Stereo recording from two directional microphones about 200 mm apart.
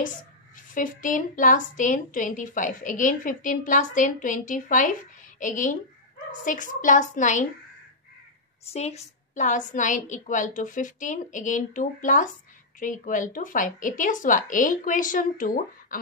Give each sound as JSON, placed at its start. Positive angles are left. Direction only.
{"t": 0.6, "sound": "a woman's voice", "side_deg": 40}
{"t": 8.7, "sound": "a woman's voice", "side_deg": 35}